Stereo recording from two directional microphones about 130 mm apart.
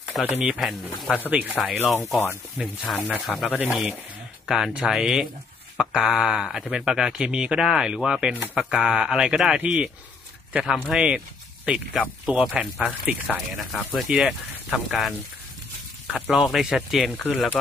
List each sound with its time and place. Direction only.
0.3 s speech: 5° right (ahead or behind)
2.0 s speech: 20° left (ahead or behind)
2.5 s speech: 5° right (ahead or behind)
13.5 s speech: centre (ahead or behind)